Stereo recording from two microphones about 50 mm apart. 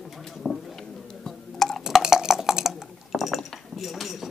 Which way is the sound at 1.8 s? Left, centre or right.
Centre.